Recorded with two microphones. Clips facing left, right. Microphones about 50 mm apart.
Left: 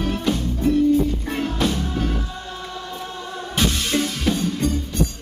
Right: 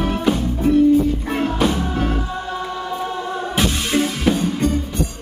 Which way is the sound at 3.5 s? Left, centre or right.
Centre.